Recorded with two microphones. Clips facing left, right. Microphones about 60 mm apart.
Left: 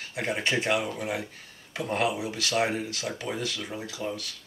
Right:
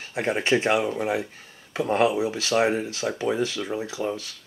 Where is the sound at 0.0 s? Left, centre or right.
Right.